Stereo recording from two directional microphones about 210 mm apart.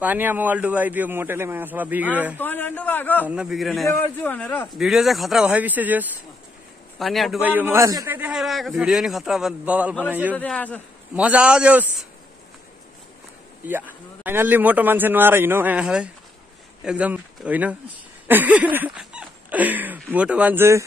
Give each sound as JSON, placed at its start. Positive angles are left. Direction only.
{"t": 0.0, "sound": "speech", "side_deg": -10}
{"t": 2.3, "sound": "a man's voice", "side_deg": 10}
{"t": 3.3, "sound": "a man's voice", "side_deg": -5}
{"t": 10.3, "sound": "a man's voice", "side_deg": 5}
{"t": 11.1, "sound": "a man's voice", "side_deg": -5}
{"t": 13.7, "sound": "speech", "side_deg": -10}